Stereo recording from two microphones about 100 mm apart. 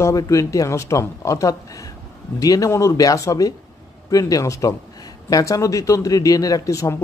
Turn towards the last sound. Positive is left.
turn(degrees=35)  # may be behind; listen again after turning